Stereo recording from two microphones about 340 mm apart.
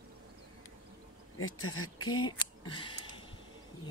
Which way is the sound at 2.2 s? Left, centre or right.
Centre.